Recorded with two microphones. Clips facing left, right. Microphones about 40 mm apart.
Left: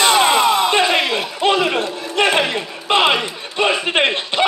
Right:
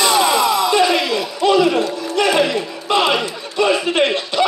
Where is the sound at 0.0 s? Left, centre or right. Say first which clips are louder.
Left 1 dB; left.